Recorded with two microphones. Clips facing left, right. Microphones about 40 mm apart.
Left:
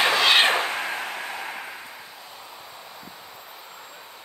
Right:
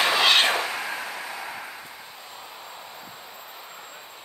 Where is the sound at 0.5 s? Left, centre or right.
Left.